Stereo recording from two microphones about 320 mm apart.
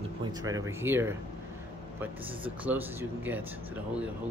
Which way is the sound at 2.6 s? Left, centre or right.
Centre.